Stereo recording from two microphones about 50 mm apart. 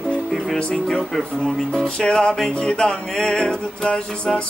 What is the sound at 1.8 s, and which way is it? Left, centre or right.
Music, centre.